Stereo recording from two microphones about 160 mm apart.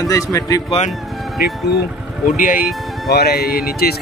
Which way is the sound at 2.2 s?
60° left (ahead or behind).